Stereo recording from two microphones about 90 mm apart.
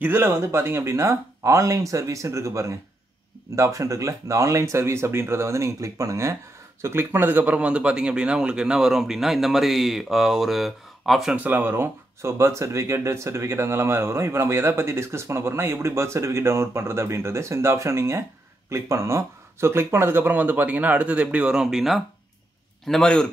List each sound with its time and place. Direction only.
0.0 s speech: 25° right (ahead or behind); by 11.3 s centre (ahead or behind)
11.3 s a man's voice: 20° right (ahead or behind); by 23.3 s 10° left (ahead or behind)